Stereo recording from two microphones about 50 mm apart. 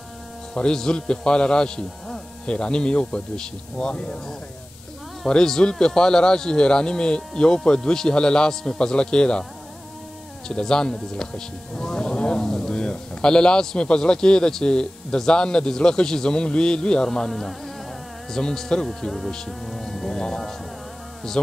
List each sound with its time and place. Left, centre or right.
0.6 s speech: centre
5.2 s speech: centre
10.5 s speech: centre
17.1 s speech: centre